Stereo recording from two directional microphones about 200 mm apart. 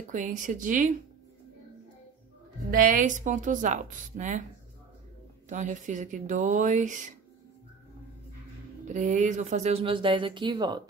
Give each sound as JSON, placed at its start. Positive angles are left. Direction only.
{"t": 0.1, "sound": "speech", "side_deg": -40}
{"t": 2.7, "sound": "speech", "side_deg": -45}
{"t": 5.5, "sound": "speech", "side_deg": -40}
{"t": 8.8, "sound": "speech", "side_deg": -35}